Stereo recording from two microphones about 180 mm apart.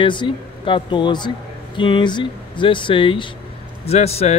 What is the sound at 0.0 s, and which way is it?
Speech, 25° left (ahead or behind).